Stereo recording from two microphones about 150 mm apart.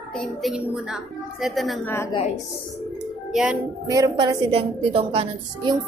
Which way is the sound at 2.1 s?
45° left (ahead or behind).